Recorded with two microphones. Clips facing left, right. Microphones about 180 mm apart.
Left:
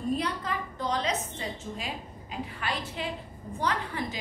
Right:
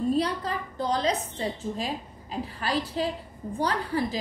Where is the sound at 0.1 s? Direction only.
35° right (ahead or behind).